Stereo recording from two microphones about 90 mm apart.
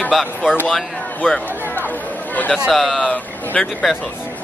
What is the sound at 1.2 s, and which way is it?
Speech, 15° left (ahead or behind).